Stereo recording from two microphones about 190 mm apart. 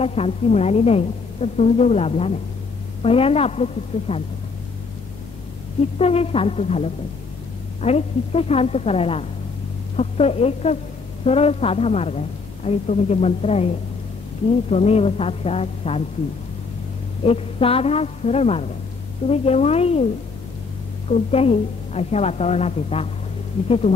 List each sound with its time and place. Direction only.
0.0 s a woman's voice: 30° left (ahead or behind)
5.9 s a woman's voice: 30° left (ahead or behind)
14.7 s a woman's voice: 35° left (ahead or behind)
17.2 s a woman's voice: 30° left (ahead or behind)
21.1 s a woman's voice: 30° left (ahead or behind)